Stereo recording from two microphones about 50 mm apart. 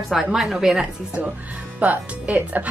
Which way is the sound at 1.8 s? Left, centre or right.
Right.